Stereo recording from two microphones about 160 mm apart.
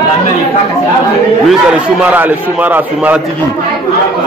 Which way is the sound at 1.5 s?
5° right (ahead or behind).